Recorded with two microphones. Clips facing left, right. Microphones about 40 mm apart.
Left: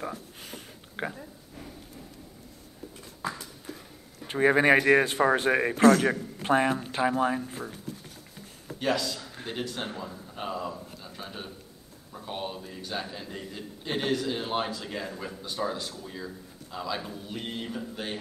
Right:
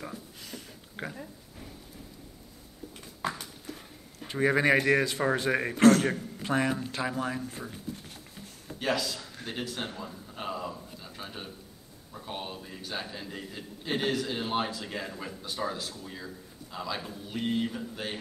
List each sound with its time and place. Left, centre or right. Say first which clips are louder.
0.1 s a sound: left 2 dB; left
4.3 s speech: left 3 dB; left
5.9 s a man's voice: left 1 dB; left
6.4 s speech: left 4 dB; left
8.7 s a man's voice: left 2 dB; centre